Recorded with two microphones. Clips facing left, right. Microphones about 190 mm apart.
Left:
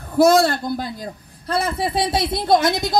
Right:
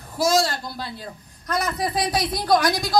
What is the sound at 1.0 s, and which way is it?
A woman's voice, 30° left (ahead or behind).